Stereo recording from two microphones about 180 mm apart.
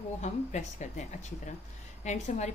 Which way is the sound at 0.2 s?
40° left (ahead or behind).